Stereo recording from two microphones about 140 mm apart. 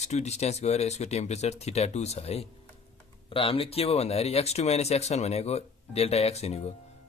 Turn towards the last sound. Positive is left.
turn(degrees=50)  # may be behind; listen again after turning